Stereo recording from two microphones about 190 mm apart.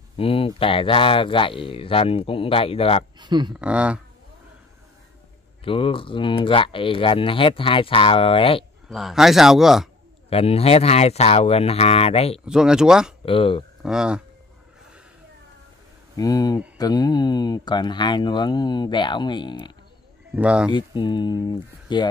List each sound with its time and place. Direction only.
0.2 s speech: 30° left (ahead or behind)
3.2 s speech: 25° right (ahead or behind)
3.5 s a man's voice: 5° right (ahead or behind)
5.6 s speech: 30° left (ahead or behind)
8.8 s a man's voice: centre (ahead or behind)
10.3 s speech: 30° left (ahead or behind)
12.4 s a man's voice: 5° right (ahead or behind)
13.2 s speech: 30° left (ahead or behind)
13.8 s a man's voice: 5° right (ahead or behind)
16.2 s speech: 20° left (ahead or behind)
20.3 s speech: 5° right (ahead or behind)
20.7 s speech: 25° left (ahead or behind)